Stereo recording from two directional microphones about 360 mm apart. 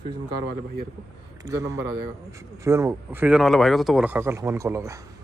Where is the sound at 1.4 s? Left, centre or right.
Centre.